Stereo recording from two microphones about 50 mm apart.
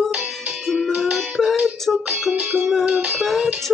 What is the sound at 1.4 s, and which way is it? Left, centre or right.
Music, centre.